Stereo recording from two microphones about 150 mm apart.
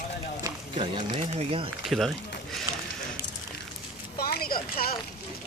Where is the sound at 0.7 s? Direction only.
30° right (ahead or behind).